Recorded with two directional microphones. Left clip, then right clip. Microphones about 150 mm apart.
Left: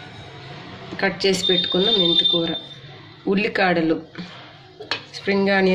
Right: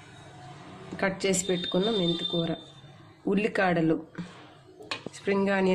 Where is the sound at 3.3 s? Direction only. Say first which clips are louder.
Left 6 dB; 90° right.